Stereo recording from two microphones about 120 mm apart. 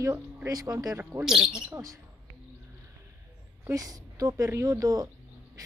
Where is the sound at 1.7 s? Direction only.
30° right (ahead or behind).